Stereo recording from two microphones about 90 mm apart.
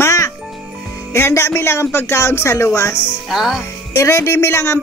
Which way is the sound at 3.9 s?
35° left (ahead or behind).